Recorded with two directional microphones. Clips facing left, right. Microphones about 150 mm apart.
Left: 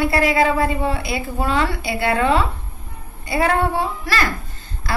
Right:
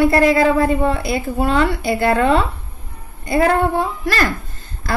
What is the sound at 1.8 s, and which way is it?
A woman's voice, 40° right (ahead or behind).